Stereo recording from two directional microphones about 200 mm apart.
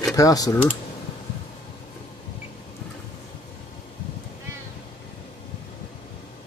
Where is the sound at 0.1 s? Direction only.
15° left (ahead or behind).